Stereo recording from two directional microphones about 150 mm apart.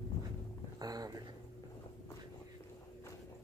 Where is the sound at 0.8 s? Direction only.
25° right (ahead or behind).